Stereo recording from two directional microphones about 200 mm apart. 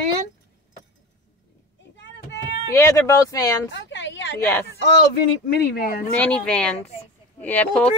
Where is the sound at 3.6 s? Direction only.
65° left (ahead or behind).